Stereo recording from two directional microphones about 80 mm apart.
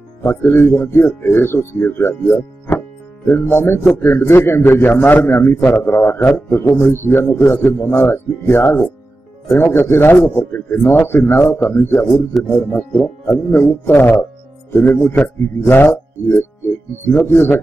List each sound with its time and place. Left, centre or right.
0.2 s a man's voice: left
13.3 s a man's voice: left